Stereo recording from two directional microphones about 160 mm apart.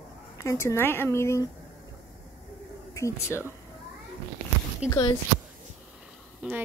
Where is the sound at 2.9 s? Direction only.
20° left (ahead or behind).